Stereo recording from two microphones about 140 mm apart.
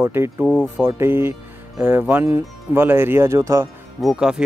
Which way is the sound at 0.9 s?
15° right (ahead or behind).